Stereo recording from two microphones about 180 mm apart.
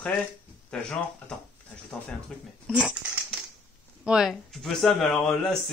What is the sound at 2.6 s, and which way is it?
Dog, 5° right (ahead or behind).